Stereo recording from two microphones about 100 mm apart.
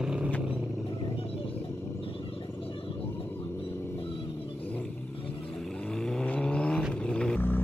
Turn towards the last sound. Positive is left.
turn(degrees=10)  # may be behind; listen again after turning